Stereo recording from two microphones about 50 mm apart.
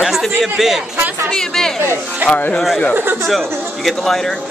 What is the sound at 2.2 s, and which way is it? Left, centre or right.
Speech, left.